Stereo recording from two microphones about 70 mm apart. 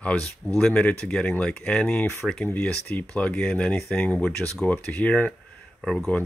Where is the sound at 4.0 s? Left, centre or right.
Left.